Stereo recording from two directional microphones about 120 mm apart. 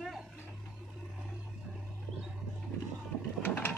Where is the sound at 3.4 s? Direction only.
15° left (ahead or behind).